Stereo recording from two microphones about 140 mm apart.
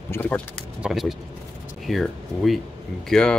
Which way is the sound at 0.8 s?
Centre (ahead or behind).